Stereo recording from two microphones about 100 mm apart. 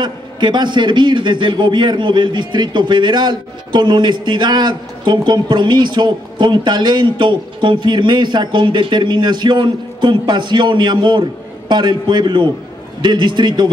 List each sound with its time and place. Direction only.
0.0 s a man's voice: 50° right (ahead or behind)